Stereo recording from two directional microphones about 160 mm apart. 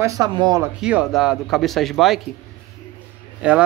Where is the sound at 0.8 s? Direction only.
5° right (ahead or behind).